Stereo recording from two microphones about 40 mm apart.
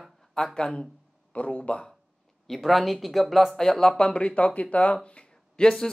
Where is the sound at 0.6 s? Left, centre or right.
Left.